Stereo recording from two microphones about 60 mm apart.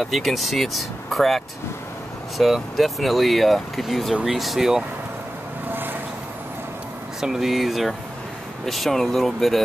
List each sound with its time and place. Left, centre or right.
0.0 s speech: centre
5.7 s a sound: right
7.2 s speech: centre